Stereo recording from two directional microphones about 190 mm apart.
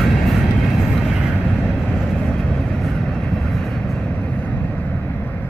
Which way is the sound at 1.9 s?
Centre (ahead or behind).